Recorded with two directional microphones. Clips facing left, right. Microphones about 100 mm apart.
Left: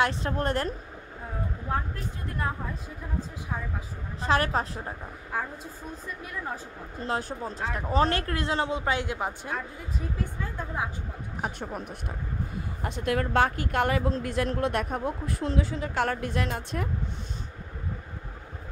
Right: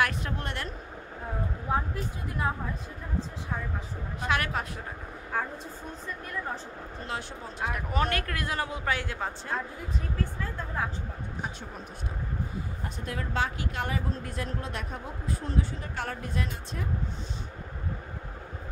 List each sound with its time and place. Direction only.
0.4 s speech: 40° left (ahead or behind)
1.7 s speech: 15° right (ahead or behind)
4.2 s speech: 35° left (ahead or behind)
7.1 s speech: 40° left (ahead or behind)
7.7 s a woman's voice: 30° left (ahead or behind); by 10.9 s 15° left (ahead or behind)
12.8 s a woman's voice: 75° left (ahead or behind)